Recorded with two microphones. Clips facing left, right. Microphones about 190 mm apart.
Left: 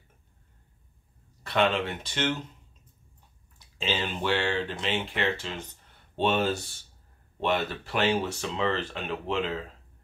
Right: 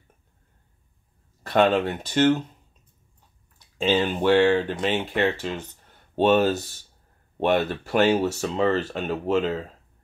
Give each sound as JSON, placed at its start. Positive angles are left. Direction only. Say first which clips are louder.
{"t": 1.4, "sound": "speech", "louder": "right 6 dB", "side_deg": -45}
{"t": 3.7, "sound": "speech", "louder": "right 9 dB", "side_deg": -50}